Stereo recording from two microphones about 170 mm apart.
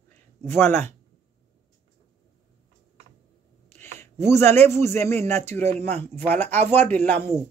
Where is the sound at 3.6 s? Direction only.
15° left (ahead or behind).